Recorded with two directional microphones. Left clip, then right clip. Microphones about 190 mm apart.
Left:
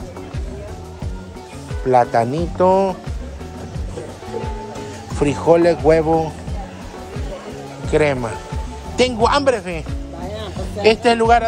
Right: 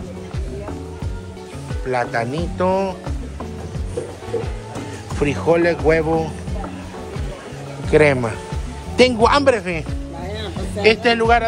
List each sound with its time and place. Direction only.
1.9 s speech: 30° left (ahead or behind)
5.2 s speech: 20° left (ahead or behind)
7.9 s speech: 15° left (ahead or behind)